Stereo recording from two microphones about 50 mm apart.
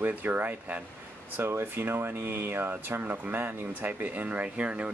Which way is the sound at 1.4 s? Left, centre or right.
Right.